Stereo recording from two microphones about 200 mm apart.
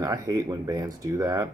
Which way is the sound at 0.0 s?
20° right (ahead or behind).